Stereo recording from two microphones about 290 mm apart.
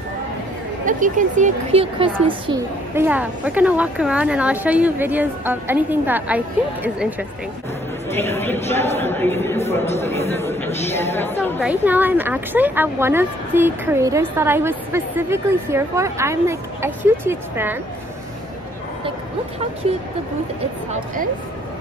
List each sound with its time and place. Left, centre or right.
0.8 s a woman's voice: right; by 7.2 s centre
8.1 s a woman's voice: centre
9.6 s speech: left
10.3 s a woman's voice: centre
11.7 s a woman's voice: centre